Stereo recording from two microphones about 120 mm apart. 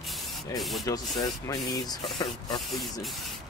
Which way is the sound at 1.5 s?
35° left (ahead or behind).